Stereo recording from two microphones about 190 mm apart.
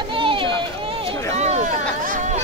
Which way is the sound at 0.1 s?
25° right (ahead or behind).